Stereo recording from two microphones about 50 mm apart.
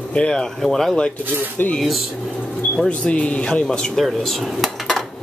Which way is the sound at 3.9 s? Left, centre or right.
Centre.